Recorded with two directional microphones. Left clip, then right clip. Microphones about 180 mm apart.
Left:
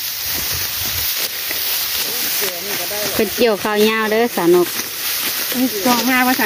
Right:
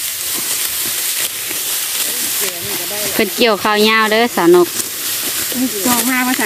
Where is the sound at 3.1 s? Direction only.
Centre (ahead or behind).